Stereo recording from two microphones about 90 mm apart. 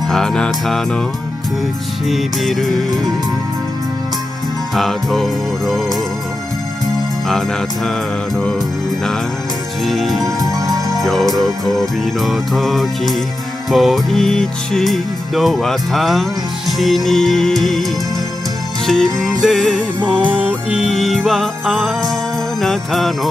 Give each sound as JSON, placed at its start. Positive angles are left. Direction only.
{"t": 0.1, "sound": "music", "side_deg": 5}
{"t": 2.0, "sound": "music", "side_deg": 0}
{"t": 4.7, "sound": "music", "side_deg": 0}
{"t": 7.2, "sound": "music", "side_deg": 5}
{"t": 9.8, "sound": "music", "side_deg": 0}
{"t": 18.9, "sound": "music", "side_deg": 0}
{"t": 20.0, "sound": "music", "side_deg": -20}
{"t": 20.7, "sound": "music", "side_deg": 0}